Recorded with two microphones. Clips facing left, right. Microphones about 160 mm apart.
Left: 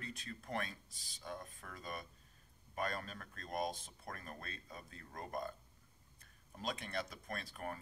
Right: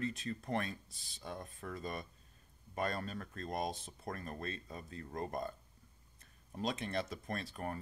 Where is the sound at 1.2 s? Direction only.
30° right (ahead or behind).